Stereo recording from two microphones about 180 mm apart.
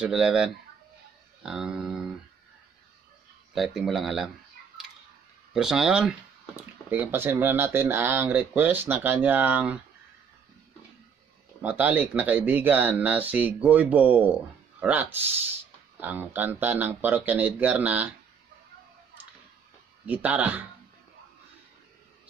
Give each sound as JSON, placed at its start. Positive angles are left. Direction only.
{"t": 0.0, "sound": "speech", "side_deg": -5}
{"t": 3.5, "sound": "speech", "side_deg": 0}
{"t": 5.5, "sound": "speech", "side_deg": -5}
{"t": 11.6, "sound": "speech", "side_deg": -10}
{"t": 20.1, "sound": "speech", "side_deg": -10}